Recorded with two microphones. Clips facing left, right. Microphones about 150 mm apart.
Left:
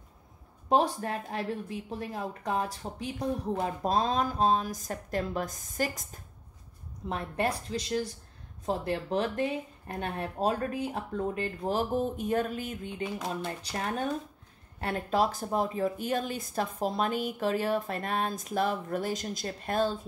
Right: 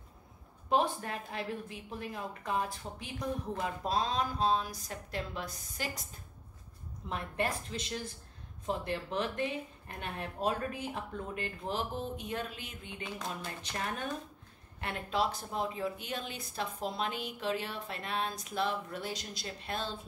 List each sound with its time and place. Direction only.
0.7 s speech: 40° left (ahead or behind)
13.4 s speech: 30° left (ahead or behind)